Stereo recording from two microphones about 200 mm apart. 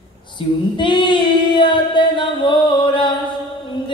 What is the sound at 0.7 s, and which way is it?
Female singing, 25° left (ahead or behind).